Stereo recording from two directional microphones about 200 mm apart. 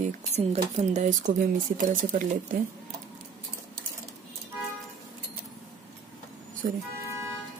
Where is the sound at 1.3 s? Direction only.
45° right (ahead or behind).